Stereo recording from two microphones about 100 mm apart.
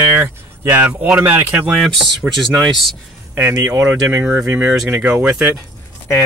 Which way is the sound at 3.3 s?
25° right (ahead or behind).